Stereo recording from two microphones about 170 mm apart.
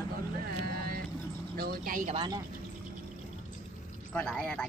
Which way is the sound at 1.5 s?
65° right (ahead or behind).